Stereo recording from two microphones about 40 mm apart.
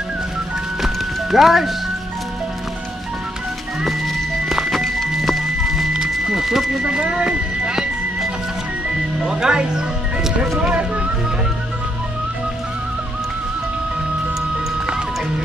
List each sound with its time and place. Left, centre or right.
0.8 s music: centre
4.5 s music: centre
6.8 s speech: right
9.2 s speech: centre
10.7 s speech: right